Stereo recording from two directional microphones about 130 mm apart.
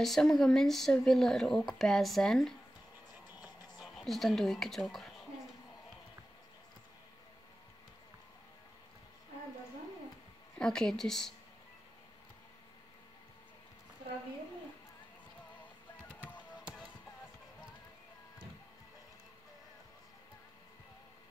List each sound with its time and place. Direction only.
0.0 s speech: 5° left (ahead or behind)
3.3 s music: 30° left (ahead or behind)
3.8 s speech: centre (ahead or behind)
10.6 s speech: 5° left (ahead or behind)
16.1 s music: 10° left (ahead or behind)